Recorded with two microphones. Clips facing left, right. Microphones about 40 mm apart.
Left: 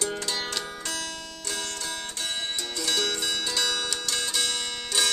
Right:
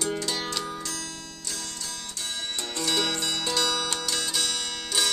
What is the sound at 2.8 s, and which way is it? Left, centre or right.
Zither, centre.